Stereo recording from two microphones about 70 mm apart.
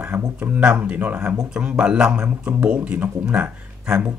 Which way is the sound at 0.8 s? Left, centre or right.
Right.